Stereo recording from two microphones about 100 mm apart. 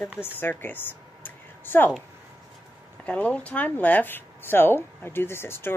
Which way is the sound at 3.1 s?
15° left (ahead or behind).